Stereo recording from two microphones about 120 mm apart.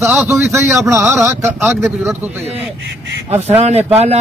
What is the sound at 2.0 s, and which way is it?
Speech, 5° right (ahead or behind).